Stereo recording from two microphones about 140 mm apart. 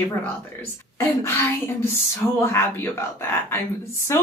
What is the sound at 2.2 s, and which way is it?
Speech, 5° right (ahead or behind).